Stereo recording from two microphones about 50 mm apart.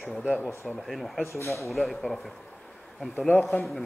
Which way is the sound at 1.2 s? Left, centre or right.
Left.